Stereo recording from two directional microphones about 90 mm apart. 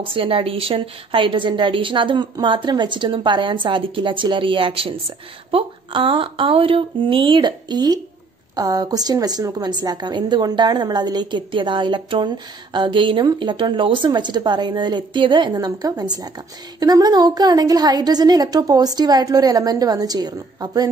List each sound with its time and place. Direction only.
0.0 s a woman's voice: 75° right (ahead or behind)
15.5 s a woman's voice: 45° right (ahead or behind)